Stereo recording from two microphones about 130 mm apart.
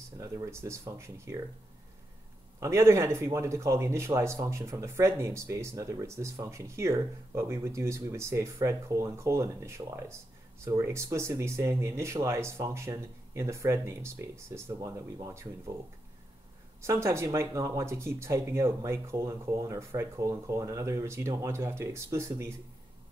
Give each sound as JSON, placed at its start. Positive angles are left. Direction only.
{"t": 0.2, "sound": "speech", "side_deg": -20}
{"t": 2.6, "sound": "speech", "side_deg": -20}
{"t": 16.8, "sound": "speech", "side_deg": -20}